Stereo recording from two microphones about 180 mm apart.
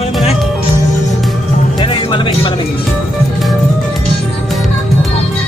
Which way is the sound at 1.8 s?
30° left (ahead or behind).